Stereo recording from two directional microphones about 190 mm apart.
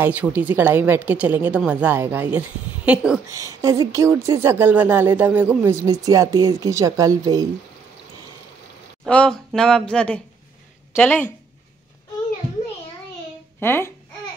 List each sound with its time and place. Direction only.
0.0 s speech: 10° right (ahead or behind)
3.3 s speech: 15° right (ahead or behind)
9.0 s a woman's voice: 5° left (ahead or behind)
13.6 s a child's voice: 10° left (ahead or behind)